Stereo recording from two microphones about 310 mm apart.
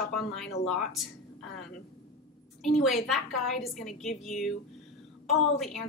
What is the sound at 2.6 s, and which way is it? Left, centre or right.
A woman's voice, centre.